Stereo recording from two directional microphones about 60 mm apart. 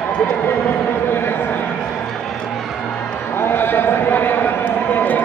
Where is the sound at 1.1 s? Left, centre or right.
Left.